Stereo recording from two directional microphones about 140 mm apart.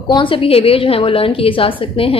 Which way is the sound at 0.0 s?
35° left (ahead or behind).